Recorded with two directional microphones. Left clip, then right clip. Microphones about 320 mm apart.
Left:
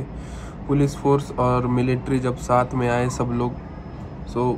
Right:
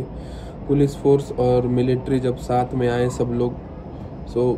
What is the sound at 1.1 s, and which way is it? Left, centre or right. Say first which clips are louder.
Speech: right 2 dB; centre.